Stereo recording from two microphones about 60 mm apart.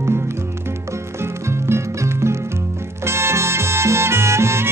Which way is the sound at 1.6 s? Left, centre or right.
Right.